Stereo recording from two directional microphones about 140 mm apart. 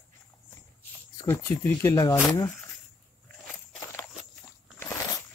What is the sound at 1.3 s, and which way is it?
Speech, 15° left (ahead or behind).